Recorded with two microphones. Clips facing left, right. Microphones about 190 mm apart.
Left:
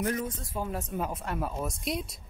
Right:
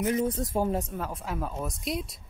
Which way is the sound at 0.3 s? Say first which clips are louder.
Right 8 dB; 45° right (ahead or behind).